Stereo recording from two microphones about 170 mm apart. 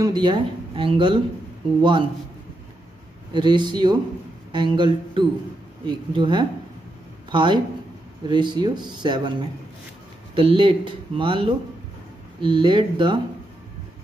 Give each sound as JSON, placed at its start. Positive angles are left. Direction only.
{"t": 0.0, "sound": "speech", "side_deg": -25}
{"t": 3.3, "sound": "speech", "side_deg": -25}
{"t": 10.3, "sound": "speech", "side_deg": -30}